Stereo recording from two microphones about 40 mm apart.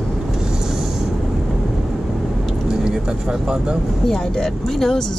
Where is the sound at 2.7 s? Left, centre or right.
Right.